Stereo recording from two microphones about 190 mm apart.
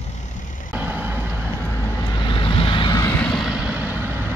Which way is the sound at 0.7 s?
10° right (ahead or behind).